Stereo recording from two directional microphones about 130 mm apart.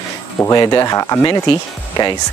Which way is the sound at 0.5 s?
30° left (ahead or behind).